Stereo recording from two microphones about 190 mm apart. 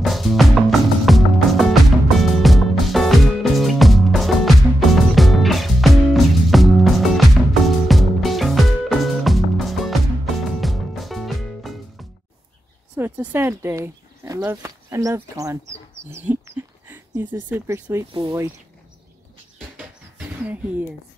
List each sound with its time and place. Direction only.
0.0 s music: centre (ahead or behind)
12.9 s speech: 10° right (ahead or behind)
19.8 s a sound: 5° right (ahead or behind)